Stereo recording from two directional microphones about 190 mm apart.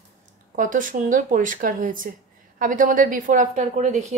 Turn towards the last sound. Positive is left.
turn(degrees=-40)  # may be behind; listen again after turning